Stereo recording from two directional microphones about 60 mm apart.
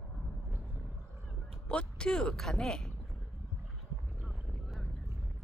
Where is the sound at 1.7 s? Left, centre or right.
Centre.